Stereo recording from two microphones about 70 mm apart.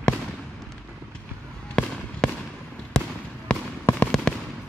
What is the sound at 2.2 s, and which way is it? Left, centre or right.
Fireworks, centre.